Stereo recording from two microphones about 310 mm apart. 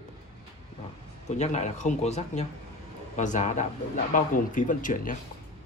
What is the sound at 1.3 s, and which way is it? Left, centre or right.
Speech, left.